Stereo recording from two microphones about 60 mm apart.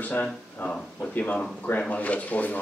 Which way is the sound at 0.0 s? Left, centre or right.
Left.